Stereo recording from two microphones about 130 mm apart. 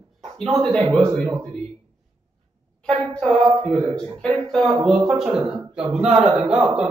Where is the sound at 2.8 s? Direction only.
5° left (ahead or behind).